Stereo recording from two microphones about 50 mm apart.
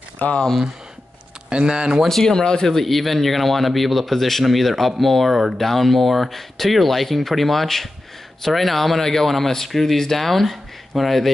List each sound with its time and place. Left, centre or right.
0.2 s speech: left
1.5 s speech: centre
2.0 s speech: centre